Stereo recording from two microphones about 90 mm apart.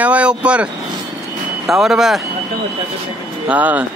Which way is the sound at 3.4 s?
15° right (ahead or behind).